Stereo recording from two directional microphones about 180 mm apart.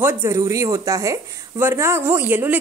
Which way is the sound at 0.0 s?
10° right (ahead or behind).